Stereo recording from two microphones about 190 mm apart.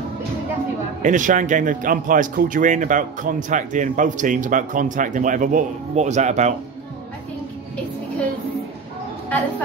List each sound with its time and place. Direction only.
1.0 s speech: 40° right (ahead or behind)